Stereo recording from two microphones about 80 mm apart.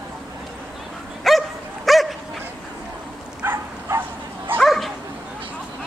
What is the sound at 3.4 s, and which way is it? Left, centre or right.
Dog, right.